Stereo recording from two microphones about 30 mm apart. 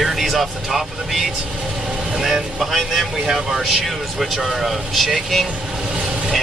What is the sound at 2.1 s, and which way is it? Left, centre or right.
Speech, centre.